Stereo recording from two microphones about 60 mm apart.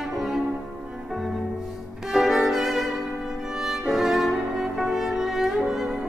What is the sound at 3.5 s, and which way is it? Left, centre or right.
Music, centre.